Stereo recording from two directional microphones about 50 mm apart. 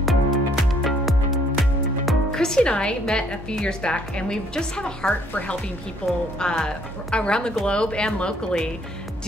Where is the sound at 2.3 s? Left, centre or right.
Centre.